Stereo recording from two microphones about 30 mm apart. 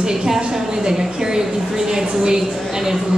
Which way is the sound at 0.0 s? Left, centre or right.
Right.